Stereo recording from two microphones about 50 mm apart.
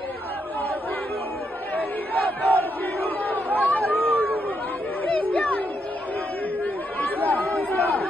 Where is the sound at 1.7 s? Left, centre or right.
Left.